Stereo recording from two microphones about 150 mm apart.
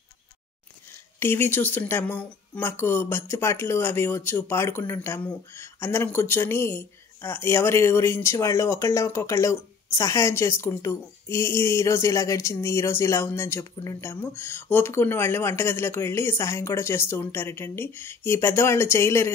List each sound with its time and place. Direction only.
1.2 s speech: 15° left (ahead or behind)